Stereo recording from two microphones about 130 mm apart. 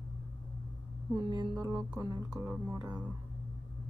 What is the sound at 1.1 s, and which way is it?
Music, 35° right (ahead or behind).